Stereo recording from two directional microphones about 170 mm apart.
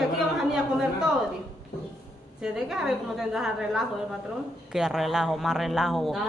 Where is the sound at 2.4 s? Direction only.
5° right (ahead or behind).